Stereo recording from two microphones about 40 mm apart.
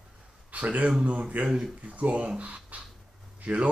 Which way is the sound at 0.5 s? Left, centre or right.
Right.